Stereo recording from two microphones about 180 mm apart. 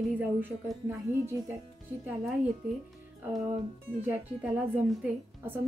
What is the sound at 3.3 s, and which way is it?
Speech, 20° right (ahead or behind).